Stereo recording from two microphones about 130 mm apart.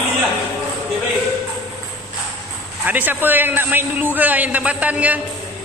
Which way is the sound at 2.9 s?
15° right (ahead or behind).